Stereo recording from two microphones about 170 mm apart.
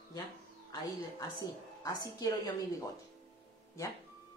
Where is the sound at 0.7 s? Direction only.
20° left (ahead or behind).